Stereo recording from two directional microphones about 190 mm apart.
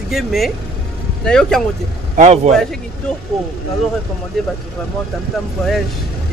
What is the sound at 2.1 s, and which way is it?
Speech, 35° right (ahead or behind).